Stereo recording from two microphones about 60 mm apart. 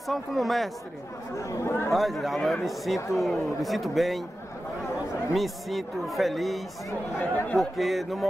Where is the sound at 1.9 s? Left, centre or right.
Centre.